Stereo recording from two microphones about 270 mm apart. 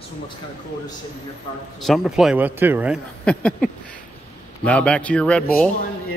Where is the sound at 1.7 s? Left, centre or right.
Centre.